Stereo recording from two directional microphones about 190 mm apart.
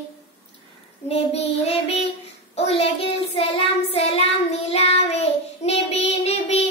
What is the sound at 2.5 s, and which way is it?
Child singing, 30° left (ahead or behind).